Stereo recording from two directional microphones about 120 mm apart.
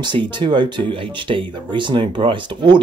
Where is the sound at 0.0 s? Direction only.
40° right (ahead or behind).